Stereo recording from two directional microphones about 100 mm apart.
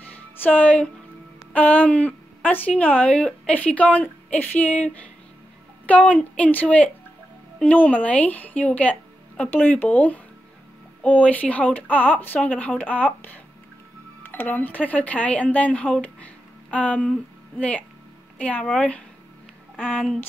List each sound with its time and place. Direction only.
0.0 s music: 15° left (ahead or behind)
1.5 s speech: 15° left (ahead or behind)